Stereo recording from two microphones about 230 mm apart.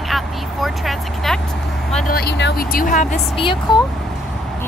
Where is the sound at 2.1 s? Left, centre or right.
Left.